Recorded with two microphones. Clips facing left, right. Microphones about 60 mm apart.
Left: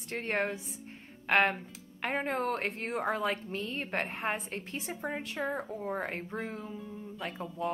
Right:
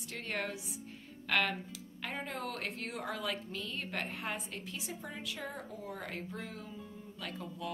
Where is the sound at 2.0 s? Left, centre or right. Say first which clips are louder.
Left 8 dB; left.